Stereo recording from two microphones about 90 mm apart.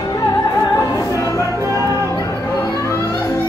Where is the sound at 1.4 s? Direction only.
35° right (ahead or behind).